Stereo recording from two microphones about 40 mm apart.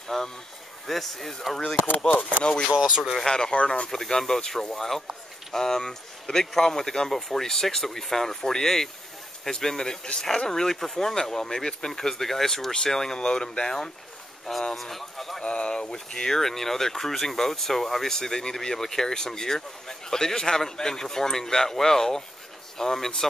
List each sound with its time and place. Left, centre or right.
0.1 s speech: centre
2.7 s speech: right
3.3 s speech: centre
3.5 s speech: left
3.9 s speech: centre
15.4 s speech: left